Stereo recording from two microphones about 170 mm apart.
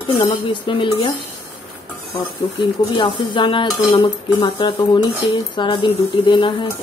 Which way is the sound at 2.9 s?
30° left (ahead or behind).